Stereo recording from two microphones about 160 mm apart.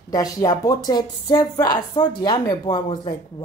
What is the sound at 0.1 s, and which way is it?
A woman's voice, 20° left (ahead or behind).